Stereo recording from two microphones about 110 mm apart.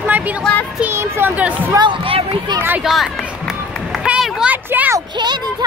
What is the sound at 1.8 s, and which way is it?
Speech, 50° right (ahead or behind).